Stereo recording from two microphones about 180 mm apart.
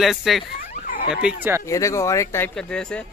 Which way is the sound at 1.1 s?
5° right (ahead or behind).